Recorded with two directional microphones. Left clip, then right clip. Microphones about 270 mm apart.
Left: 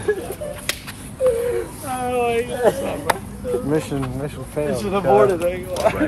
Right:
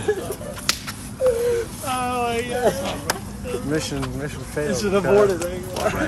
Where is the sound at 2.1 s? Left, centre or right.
Right.